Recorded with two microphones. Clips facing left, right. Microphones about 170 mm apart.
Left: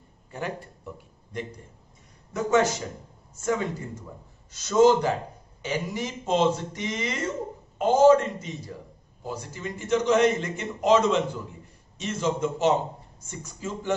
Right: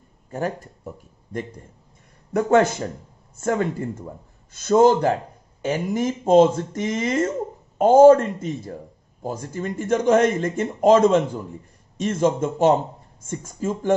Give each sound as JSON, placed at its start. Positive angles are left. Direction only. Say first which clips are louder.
{"t": 0.3, "sound": "speech", "louder": "right 6 dB", "side_deg": -45}
{"t": 2.3, "sound": "a man's voice", "louder": "right 5 dB", "side_deg": -55}